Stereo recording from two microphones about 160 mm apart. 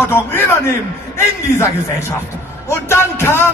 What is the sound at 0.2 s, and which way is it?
Music, 15° left (ahead or behind).